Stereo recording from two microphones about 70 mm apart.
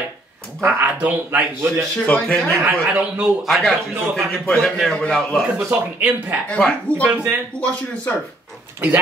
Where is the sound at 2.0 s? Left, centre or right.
Centre.